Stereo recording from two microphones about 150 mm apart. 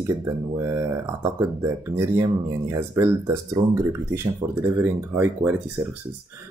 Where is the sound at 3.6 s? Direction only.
35° right (ahead or behind).